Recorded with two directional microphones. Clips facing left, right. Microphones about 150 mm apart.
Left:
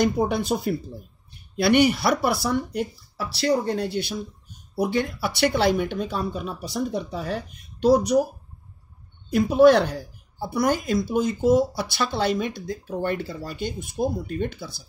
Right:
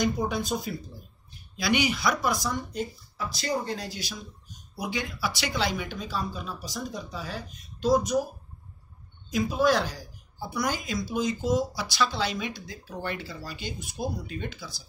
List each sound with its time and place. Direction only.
0.0 s speech: 65° left (ahead or behind)
9.3 s speech: 65° left (ahead or behind)